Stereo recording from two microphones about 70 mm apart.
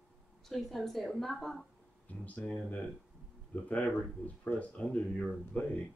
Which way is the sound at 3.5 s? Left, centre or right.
Left.